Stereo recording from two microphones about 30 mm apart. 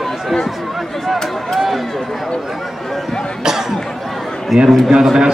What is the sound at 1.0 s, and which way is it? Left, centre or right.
Run, centre.